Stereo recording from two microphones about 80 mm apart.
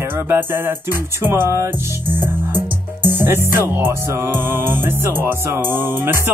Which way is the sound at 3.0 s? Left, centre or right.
Right.